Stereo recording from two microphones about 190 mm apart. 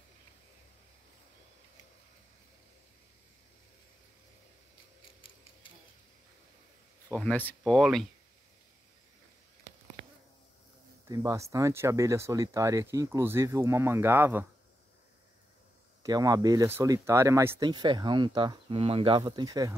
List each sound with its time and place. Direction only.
7.1 s speech: 5° left (ahead or behind)
11.1 s speech: 15° right (ahead or behind)
16.0 s speech: 20° right (ahead or behind)